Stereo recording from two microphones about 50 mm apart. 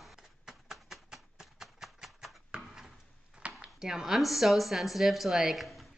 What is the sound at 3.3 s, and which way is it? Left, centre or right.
Speech, centre.